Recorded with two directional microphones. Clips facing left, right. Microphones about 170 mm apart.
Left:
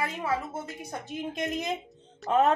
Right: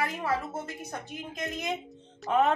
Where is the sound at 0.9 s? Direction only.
30° left (ahead or behind).